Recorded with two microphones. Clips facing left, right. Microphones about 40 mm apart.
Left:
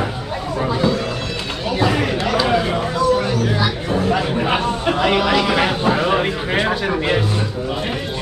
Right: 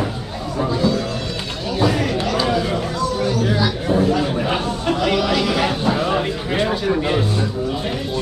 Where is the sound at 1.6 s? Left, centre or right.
Left.